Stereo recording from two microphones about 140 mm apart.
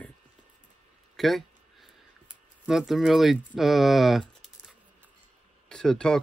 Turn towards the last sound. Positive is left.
turn(degrees=5)  # may be behind; listen again after turning